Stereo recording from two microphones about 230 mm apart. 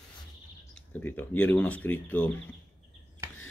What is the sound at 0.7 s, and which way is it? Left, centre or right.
Speech, centre.